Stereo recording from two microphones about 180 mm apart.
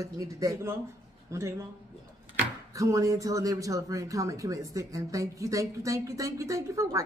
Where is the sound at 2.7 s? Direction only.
20° right (ahead or behind).